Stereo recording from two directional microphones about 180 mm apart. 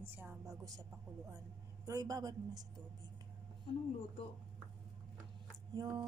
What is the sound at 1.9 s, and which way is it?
Speech, 20° right (ahead or behind).